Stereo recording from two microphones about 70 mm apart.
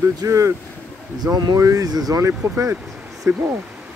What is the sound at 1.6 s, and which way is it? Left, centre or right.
Speech, right.